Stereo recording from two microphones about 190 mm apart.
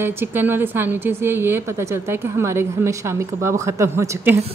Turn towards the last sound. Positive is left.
turn(degrees=-15)  # may be behind; listen again after turning